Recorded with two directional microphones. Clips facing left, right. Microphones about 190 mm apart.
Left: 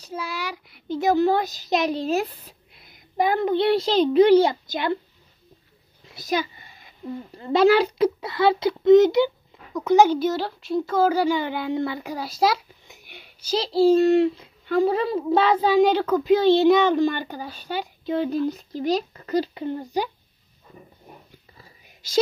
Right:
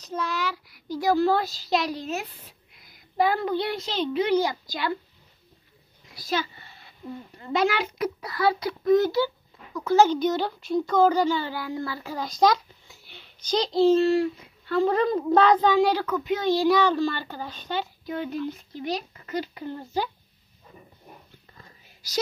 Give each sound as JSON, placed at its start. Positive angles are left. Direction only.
{"t": 0.0, "sound": "a child's voice", "side_deg": 10}
{"t": 0.7, "sound": "a woman's voice", "side_deg": 25}
{"t": 2.9, "sound": "a woman's voice", "side_deg": 20}
{"t": 6.1, "sound": "a sound", "side_deg": 15}
{"t": 7.3, "sound": "a woman's voice", "side_deg": 30}
{"t": 12.8, "sound": "speech", "side_deg": 15}
{"t": 14.7, "sound": "a child's voice", "side_deg": 10}
{"t": 15.8, "sound": "a woman's voice", "side_deg": 20}
{"t": 16.1, "sound": "a child's voice", "side_deg": 35}
{"t": 18.0, "sound": "speech", "side_deg": 30}
{"t": 19.6, "sound": "a child's voice", "side_deg": 15}
{"t": 21.5, "sound": "whispering", "side_deg": 10}